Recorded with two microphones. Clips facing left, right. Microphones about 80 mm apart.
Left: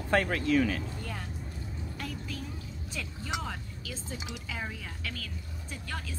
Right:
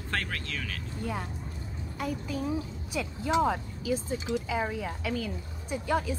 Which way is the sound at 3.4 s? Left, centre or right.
Centre.